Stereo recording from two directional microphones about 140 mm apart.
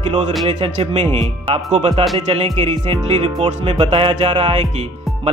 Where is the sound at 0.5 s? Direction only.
50° right (ahead or behind).